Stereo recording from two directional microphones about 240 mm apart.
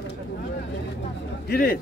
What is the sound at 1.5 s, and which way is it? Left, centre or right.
Speech, left.